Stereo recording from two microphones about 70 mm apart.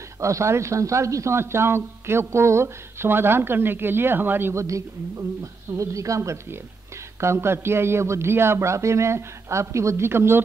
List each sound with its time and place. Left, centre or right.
0.2 s speech: right
4.6 s a woman's voice: right